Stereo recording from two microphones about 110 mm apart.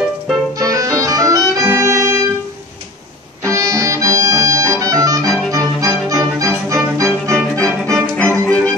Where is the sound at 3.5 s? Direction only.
30° right (ahead or behind).